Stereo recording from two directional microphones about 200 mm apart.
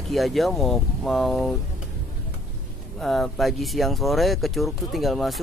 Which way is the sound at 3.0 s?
Centre (ahead or behind).